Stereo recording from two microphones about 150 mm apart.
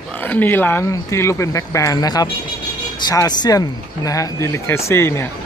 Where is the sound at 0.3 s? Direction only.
10° left (ahead or behind).